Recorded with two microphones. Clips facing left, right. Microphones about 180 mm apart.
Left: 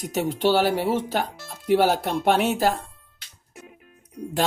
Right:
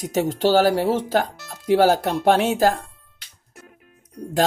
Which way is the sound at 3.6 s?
5° left (ahead or behind).